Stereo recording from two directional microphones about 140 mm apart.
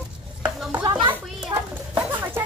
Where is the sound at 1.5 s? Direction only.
25° right (ahead or behind).